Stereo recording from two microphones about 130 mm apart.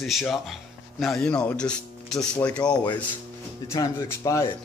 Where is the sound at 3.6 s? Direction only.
25° left (ahead or behind).